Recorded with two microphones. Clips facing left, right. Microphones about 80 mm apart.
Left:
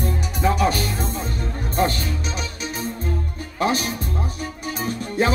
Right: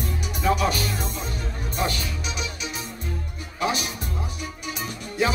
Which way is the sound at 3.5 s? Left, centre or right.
Left.